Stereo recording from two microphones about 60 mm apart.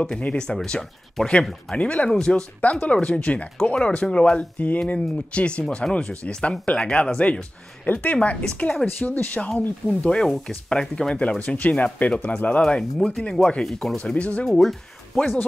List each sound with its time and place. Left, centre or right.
0.2 s speech: centre
1.4 s speech: centre
1.8 s speech: left
8.8 s speech: left
9.8 s speech: centre
11.1 s speech: left; by 13.9 s centre
13.9 s speech: left
14.5 s speech: centre